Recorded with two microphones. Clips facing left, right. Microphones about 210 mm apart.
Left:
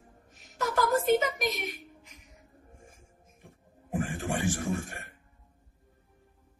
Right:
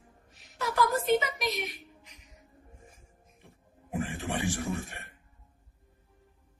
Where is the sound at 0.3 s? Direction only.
45° left (ahead or behind).